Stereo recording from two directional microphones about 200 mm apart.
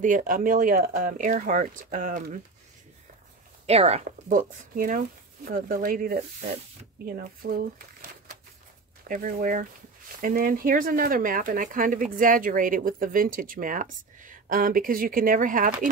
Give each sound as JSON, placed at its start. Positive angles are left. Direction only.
{"t": 0.0, "sound": "speech", "side_deg": -40}
{"t": 3.6, "sound": "speech", "side_deg": -30}
{"t": 9.0, "sound": "speech", "side_deg": -45}